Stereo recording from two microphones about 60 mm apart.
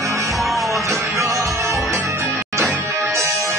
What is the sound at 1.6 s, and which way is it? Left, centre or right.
Music, right.